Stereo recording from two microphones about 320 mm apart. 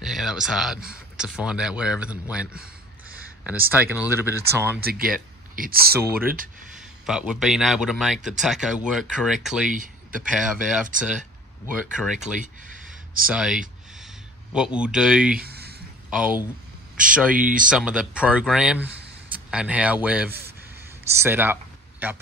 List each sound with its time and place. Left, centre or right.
0.0 s speech: centre
4.7 s speech: right
5.9 s speech: centre
13.3 s speech: centre
15.4 s a sound: right
16.1 s speech: centre
17.4 s speech: right
17.6 s speech: centre
20.7 s a sound: centre
22.0 s speech: centre